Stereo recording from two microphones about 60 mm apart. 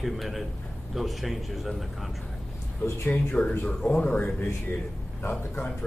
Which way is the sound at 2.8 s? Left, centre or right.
Left.